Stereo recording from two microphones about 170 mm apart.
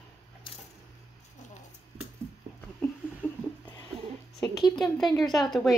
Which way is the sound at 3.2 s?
10° left (ahead or behind).